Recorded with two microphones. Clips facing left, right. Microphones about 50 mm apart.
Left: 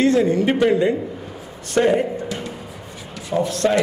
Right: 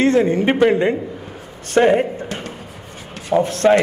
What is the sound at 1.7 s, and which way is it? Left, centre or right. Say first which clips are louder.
Music: right 3 dB; right.